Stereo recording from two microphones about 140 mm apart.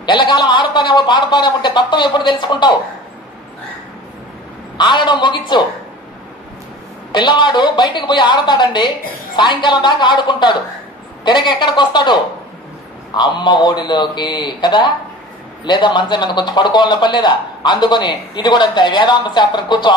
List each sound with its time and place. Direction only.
0.0 s a man's voice: 35° left (ahead or behind)
4.7 s a man's voice: 35° left (ahead or behind)
7.1 s a man's voice: 35° left (ahead or behind)